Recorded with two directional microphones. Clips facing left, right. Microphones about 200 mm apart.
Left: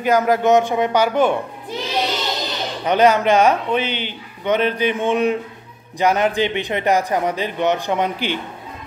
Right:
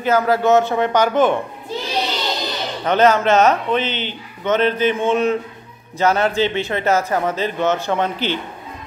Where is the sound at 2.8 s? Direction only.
10° left (ahead or behind).